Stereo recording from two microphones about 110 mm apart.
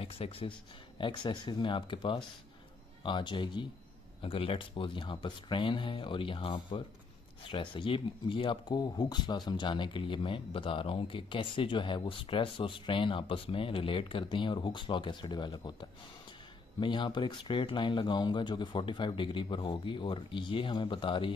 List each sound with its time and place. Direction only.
0.0 s speech: 60° left (ahead or behind)
0.9 s speech: 45° left (ahead or behind)
4.2 s speech: 55° left (ahead or behind)